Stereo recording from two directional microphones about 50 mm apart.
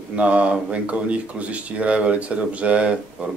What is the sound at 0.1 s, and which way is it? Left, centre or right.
Speech, right.